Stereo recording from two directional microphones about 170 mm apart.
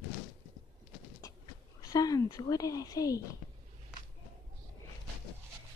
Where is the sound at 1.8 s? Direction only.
20° left (ahead or behind).